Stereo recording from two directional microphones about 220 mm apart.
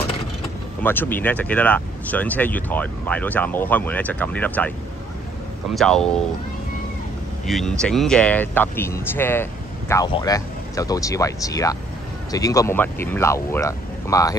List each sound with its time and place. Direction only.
0.8 s speech: 10° left (ahead or behind)
5.8 s speech: centre (ahead or behind)
7.4 s speech: centre (ahead or behind)